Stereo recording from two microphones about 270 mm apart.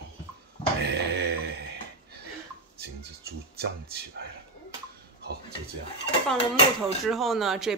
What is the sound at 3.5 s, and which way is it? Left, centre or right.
Speech, right.